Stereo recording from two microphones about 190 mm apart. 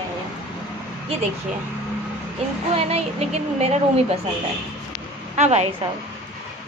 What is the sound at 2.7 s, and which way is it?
Speech, 30° right (ahead or behind).